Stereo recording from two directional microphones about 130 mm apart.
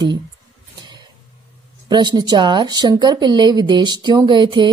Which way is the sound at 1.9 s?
35° right (ahead or behind).